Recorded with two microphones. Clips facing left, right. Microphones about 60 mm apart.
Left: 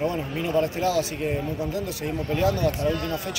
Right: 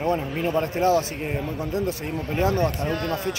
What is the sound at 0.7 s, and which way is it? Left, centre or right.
Speech, right.